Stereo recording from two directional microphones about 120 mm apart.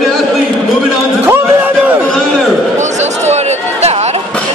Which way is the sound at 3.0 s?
70° right (ahead or behind).